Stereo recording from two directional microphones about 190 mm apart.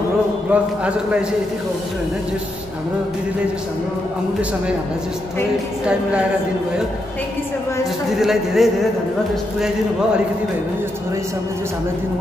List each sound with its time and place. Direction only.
0.5 s a man's voice: 5° right (ahead or behind)
8.2 s speech: centre (ahead or behind)